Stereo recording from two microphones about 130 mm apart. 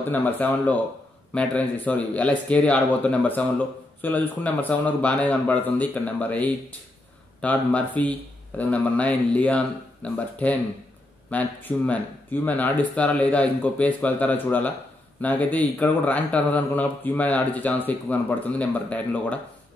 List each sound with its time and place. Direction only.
0.1 s speech: 15° left (ahead or behind)